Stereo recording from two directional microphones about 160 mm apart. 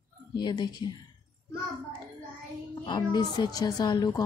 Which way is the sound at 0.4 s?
25° left (ahead or behind).